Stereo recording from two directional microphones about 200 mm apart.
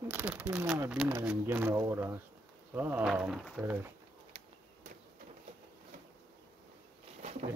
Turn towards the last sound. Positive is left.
turn(degrees=-35)  # may be behind; listen again after turning